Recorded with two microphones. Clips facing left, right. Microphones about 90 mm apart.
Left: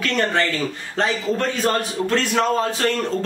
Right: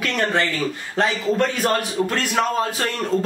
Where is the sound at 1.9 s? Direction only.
10° right (ahead or behind).